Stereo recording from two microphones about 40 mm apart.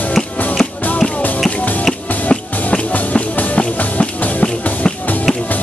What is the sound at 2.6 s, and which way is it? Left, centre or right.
Music, left.